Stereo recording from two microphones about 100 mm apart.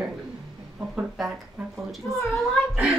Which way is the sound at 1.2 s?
Centre (ahead or behind).